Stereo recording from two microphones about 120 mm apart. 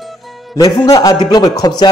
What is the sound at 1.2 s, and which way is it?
Speech, 30° left (ahead or behind).